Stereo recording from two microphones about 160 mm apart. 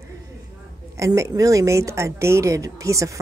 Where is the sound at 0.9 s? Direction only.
20° right (ahead or behind).